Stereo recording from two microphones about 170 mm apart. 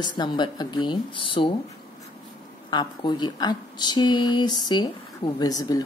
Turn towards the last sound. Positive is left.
turn(degrees=20)  # may be behind; listen again after turning